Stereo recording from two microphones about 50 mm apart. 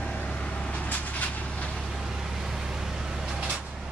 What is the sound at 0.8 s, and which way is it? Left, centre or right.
Vehicle, left.